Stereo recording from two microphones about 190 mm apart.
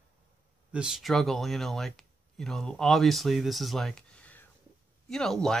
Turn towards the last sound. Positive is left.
turn(degrees=5)  # may be behind; listen again after turning